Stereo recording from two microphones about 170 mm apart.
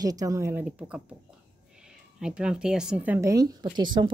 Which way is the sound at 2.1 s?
5° right (ahead or behind).